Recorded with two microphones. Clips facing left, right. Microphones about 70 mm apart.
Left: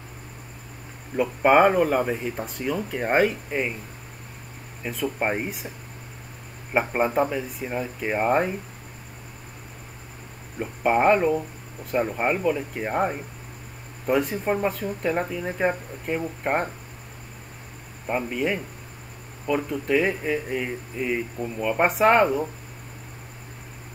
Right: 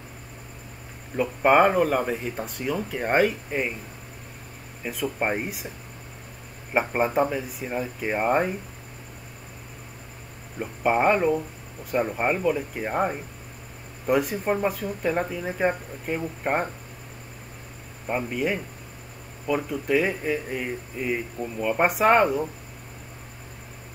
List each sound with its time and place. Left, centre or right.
1.1 s speech: centre
4.8 s speech: centre
6.7 s speech: centre
10.6 s speech: centre
18.0 s speech: centre